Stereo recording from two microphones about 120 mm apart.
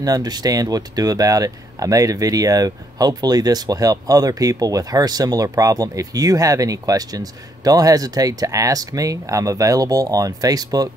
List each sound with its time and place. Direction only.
0.0 s speech: 30° right (ahead or behind)